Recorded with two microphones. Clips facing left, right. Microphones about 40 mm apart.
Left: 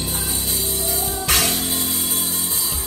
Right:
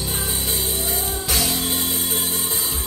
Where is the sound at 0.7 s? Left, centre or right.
Right.